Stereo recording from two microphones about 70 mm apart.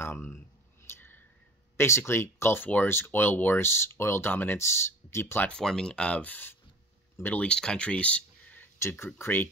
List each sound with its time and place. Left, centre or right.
0.0 s clicking: left
0.8 s a sound: left
1.8 s speech: left
5.5 s speech: centre
6.3 s speech: left
7.4 s speech: centre
8.7 s speech: left